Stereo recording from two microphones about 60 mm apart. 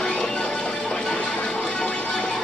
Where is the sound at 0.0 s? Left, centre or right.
Centre.